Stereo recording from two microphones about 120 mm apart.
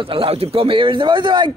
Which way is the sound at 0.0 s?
50° right (ahead or behind).